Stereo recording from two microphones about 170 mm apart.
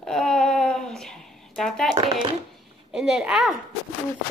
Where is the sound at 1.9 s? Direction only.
30° right (ahead or behind).